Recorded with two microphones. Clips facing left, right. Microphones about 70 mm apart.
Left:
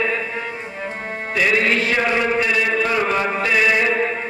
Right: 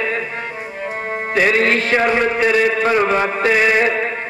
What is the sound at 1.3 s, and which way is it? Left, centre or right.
Music, right.